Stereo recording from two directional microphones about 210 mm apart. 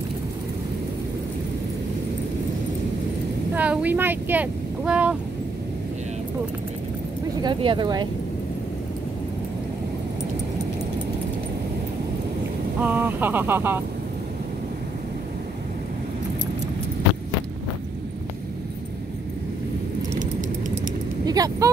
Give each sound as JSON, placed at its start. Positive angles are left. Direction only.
{"t": 3.5, "sound": "speech", "side_deg": -5}
{"t": 7.4, "sound": "speech", "side_deg": -20}
{"t": 12.8, "sound": "speech", "side_deg": -10}
{"t": 20.0, "sound": "a sound", "side_deg": -35}
{"t": 21.3, "sound": "speech", "side_deg": -15}